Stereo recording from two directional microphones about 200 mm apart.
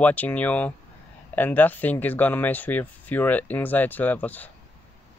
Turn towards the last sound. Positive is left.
turn(degrees=10)  # may be behind; listen again after turning